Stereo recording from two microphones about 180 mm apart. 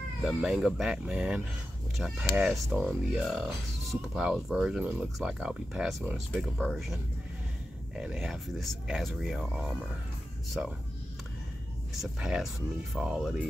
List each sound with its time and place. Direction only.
0.2 s speech: 5° right (ahead or behind)
11.9 s speech: centre (ahead or behind)